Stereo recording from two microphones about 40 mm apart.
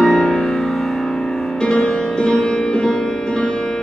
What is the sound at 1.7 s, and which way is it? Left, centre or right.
Music, left.